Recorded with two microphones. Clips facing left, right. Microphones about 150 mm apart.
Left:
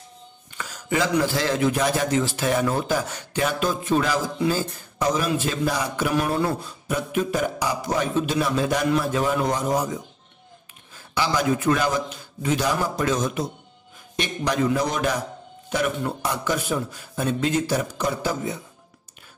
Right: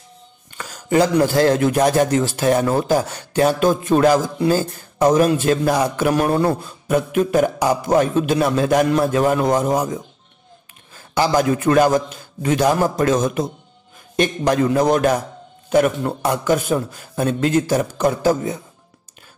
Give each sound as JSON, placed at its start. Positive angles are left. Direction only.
{"t": 0.6, "sound": "speech", "side_deg": -40}
{"t": 11.1, "sound": "speech", "side_deg": -45}